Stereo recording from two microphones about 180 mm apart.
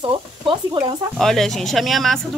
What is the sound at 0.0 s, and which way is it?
Speech, 25° right (ahead or behind).